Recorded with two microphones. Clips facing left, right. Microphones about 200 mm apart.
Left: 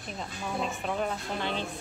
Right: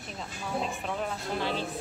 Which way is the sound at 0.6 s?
Centre (ahead or behind).